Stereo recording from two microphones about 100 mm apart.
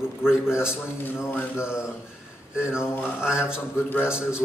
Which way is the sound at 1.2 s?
25° left (ahead or behind).